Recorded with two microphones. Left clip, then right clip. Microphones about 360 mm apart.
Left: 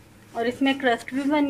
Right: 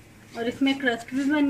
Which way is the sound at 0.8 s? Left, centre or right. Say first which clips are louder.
Left 2 dB; left.